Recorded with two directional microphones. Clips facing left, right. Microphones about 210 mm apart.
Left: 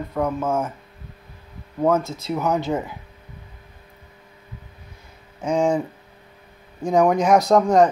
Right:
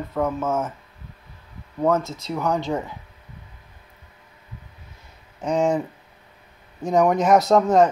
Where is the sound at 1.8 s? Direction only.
Centre (ahead or behind).